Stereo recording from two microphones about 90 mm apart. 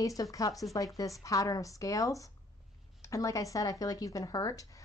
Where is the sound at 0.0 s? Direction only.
40° left (ahead or behind).